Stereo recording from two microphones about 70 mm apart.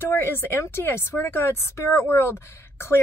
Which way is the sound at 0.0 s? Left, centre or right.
Left.